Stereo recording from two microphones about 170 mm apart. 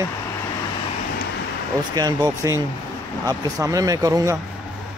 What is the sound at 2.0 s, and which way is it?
Speech, 25° right (ahead or behind).